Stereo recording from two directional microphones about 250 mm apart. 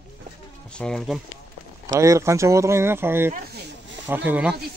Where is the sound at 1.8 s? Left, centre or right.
Centre.